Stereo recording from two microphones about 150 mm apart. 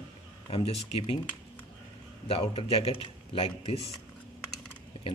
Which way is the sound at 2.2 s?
40° left (ahead or behind).